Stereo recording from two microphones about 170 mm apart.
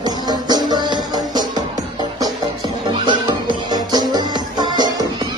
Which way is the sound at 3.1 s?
25° right (ahead or behind).